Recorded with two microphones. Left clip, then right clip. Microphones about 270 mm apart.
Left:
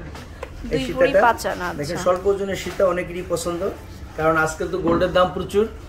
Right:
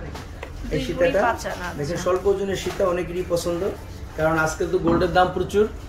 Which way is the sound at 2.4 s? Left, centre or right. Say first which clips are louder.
Left 3 dB; centre.